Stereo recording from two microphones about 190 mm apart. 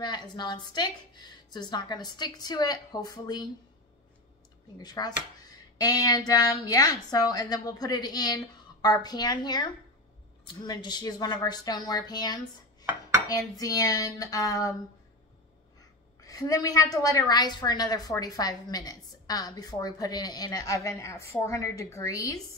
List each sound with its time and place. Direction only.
0.0 s a woman's voice: 25° left (ahead or behind)
4.7 s a woman's voice: 20° left (ahead or behind)
13.3 s a sound: 20° left (ahead or behind)
16.2 s a woman's voice: 20° left (ahead or behind)